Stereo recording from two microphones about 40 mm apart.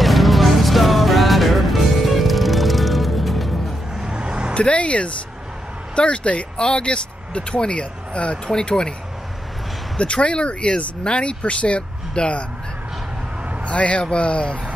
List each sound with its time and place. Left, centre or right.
0.0 s music: centre
3.9 s vehicle: centre
4.2 s vehicle: right
4.6 s speech: left
9.9 s speech: left
13.7 s speech: left